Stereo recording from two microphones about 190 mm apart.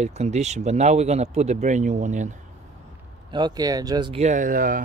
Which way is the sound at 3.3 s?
20° right (ahead or behind).